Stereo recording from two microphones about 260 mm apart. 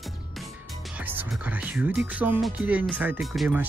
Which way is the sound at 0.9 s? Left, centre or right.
Centre.